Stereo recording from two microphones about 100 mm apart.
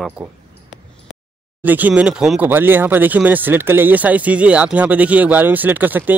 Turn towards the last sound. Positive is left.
turn(degrees=-20)  # may be behind; listen again after turning